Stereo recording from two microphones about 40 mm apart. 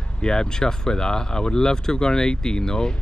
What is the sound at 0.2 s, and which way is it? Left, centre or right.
Speech, centre.